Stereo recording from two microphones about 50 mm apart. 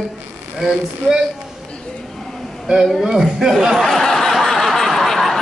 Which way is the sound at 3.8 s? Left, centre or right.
Centre.